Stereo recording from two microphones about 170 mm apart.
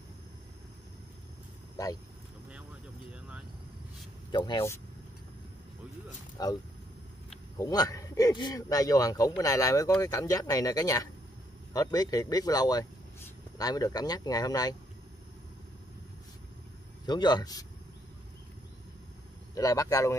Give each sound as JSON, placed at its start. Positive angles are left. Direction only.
{"t": 4.3, "sound": "a man's voice", "side_deg": 25}
{"t": 6.3, "sound": "a man's voice", "side_deg": 20}
{"t": 17.0, "sound": "a man's voice", "side_deg": 25}
{"t": 19.5, "sound": "a man's voice", "side_deg": 20}